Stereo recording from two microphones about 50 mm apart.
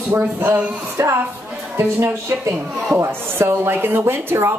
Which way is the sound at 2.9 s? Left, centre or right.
Right.